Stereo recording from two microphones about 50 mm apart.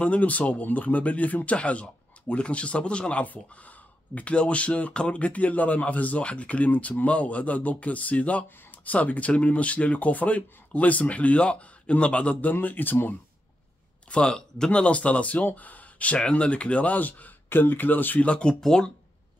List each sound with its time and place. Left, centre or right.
0.0 s speech: left
12.5 s speech: left
14.1 s speech: centre; by 18.2 s left
18.2 s speech: centre